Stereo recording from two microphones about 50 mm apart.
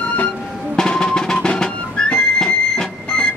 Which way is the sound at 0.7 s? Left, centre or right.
Centre.